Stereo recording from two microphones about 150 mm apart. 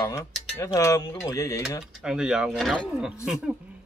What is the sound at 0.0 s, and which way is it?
Speech, 20° left (ahead or behind).